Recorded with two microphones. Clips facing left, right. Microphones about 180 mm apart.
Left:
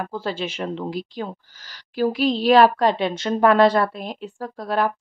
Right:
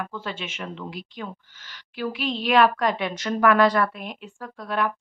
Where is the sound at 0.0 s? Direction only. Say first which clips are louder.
Left 6 dB; 35° left (ahead or behind).